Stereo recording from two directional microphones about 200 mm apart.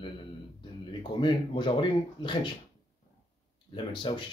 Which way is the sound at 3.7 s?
25° left (ahead or behind).